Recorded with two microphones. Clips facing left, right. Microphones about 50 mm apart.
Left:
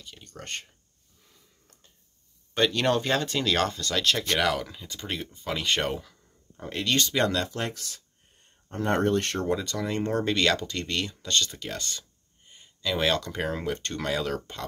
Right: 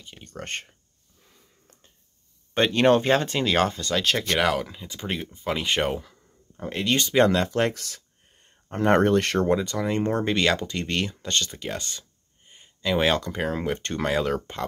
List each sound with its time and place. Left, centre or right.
0.0 s speech: right
2.5 s speech: right
7.2 s speech: right
7.5 s speech: right
8.6 s speech: right
9.5 s speech: centre
11.5 s a sound: centre
13.3 s speech: centre
13.7 s speech: right